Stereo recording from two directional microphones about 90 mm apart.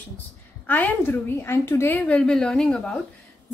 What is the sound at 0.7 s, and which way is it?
A woman's voice, 20° left (ahead or behind).